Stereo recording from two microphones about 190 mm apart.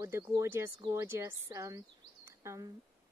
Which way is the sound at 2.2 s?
15° right (ahead or behind).